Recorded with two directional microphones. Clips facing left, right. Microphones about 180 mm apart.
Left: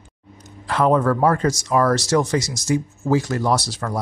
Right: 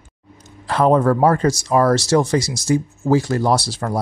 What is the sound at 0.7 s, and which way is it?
Speech, 35° right (ahead or behind).